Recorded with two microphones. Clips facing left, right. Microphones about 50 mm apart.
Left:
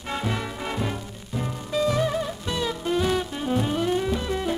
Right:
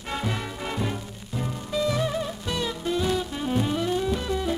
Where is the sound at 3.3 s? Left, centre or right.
Centre.